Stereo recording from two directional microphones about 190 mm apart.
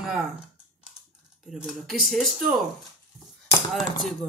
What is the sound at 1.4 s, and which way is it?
Speech, centre (ahead or behind).